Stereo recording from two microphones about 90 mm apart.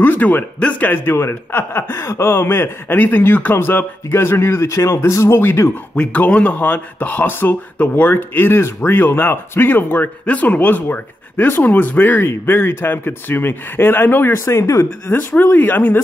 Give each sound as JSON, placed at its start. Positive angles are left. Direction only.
{"t": 0.0, "sound": "speech", "side_deg": 20}
{"t": 5.9, "sound": "speech", "side_deg": 15}